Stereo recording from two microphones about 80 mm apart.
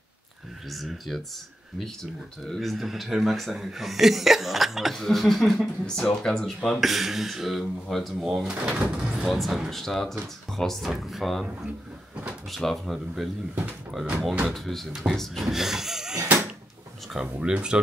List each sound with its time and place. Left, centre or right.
0.7 s speech: centre
2.4 s speech: centre
8.5 s speech: centre
12.4 s speech: centre